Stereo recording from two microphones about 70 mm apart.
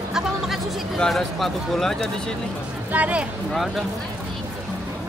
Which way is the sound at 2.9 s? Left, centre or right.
Right.